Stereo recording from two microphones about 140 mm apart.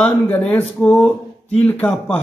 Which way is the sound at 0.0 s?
5° left (ahead or behind).